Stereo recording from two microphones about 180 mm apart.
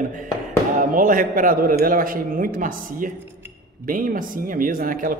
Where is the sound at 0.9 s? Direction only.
50° right (ahead or behind).